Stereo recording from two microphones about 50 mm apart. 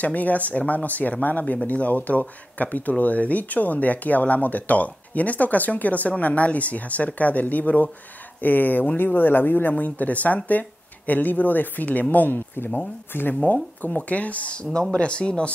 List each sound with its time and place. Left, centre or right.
0.0 s speech: left